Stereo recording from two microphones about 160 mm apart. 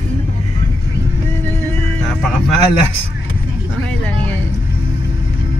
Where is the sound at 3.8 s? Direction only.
10° left (ahead or behind).